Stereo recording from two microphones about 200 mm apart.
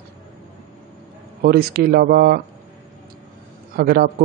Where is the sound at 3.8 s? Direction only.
50° right (ahead or behind).